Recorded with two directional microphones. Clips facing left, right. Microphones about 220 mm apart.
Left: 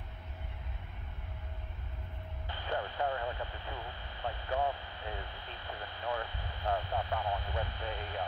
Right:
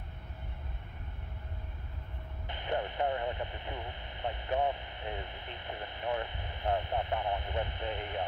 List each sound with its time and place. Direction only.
2.4 s speech: 20° right (ahead or behind)